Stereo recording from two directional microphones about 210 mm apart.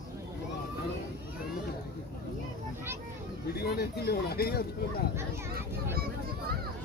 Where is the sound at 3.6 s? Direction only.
50° left (ahead or behind).